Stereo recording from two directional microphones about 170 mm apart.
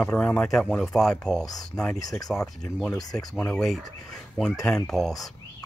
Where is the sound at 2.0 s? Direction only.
20° left (ahead or behind).